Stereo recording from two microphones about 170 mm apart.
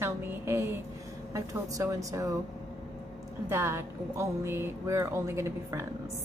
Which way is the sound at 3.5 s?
15° right (ahead or behind).